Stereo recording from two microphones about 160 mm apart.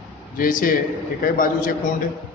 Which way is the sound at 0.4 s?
60° left (ahead or behind).